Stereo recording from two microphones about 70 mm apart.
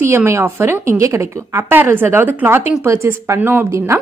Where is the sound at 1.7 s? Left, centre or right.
Right.